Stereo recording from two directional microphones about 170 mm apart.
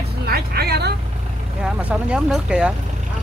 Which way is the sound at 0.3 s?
65° right (ahead or behind).